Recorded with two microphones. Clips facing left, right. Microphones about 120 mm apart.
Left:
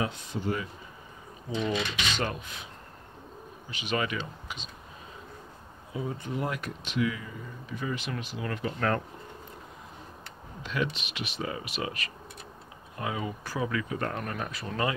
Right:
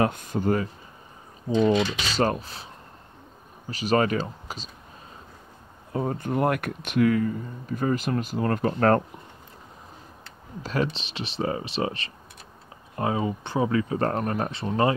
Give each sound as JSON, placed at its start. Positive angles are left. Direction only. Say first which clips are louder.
{"t": 0.0, "sound": "speech", "louder": "right 8 dB", "side_deg": -50}
{"t": 1.6, "sound": "speech", "louder": "right 9 dB", "side_deg": -35}
{"t": 5.9, "sound": "speech", "louder": "right 7 dB", "side_deg": -50}
{"t": 10.6, "sound": "speech", "louder": "right 5 dB", "side_deg": -35}